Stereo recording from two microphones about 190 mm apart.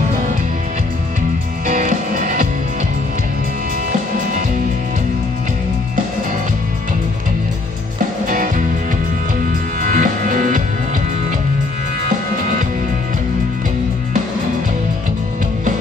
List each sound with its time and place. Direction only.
1.7 s music: 40° right (ahead or behind)
9.5 s music: 45° right (ahead or behind)